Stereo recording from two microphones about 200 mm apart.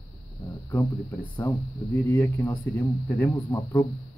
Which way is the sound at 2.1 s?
15° left (ahead or behind).